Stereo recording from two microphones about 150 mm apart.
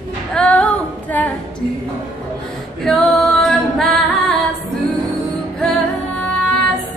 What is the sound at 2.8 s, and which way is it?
Female singing, centre (ahead or behind).